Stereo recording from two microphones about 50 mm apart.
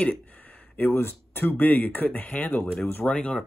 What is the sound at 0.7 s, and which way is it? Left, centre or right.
Speech, left.